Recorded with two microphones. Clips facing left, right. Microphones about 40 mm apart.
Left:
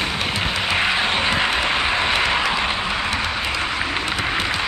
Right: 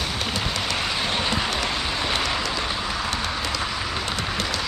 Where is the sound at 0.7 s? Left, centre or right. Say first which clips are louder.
Left 8 dB; left.